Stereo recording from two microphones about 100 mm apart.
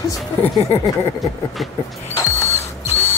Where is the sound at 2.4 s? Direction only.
20° left (ahead or behind).